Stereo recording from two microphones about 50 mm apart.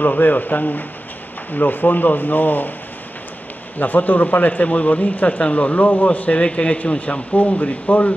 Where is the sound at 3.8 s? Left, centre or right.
Left.